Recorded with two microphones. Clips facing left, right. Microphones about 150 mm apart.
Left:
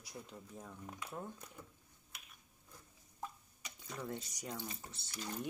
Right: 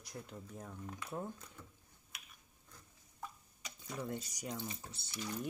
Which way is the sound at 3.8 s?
5° right (ahead or behind).